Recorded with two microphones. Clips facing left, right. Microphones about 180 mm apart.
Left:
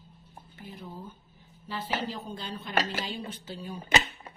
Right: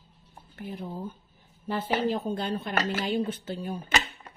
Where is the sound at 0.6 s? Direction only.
60° right (ahead or behind).